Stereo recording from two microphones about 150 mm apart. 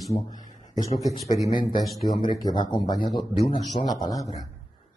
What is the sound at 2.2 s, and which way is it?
Speech, 30° left (ahead or behind).